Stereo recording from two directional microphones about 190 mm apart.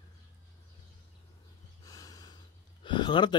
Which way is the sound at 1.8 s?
20° left (ahead or behind).